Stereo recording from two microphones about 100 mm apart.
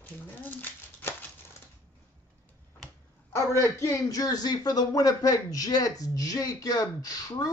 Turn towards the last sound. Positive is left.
turn(degrees=40)  # may be behind; listen again after turning